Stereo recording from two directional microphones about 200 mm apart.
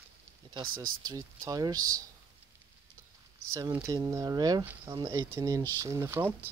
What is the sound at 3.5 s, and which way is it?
Speech, 15° right (ahead or behind).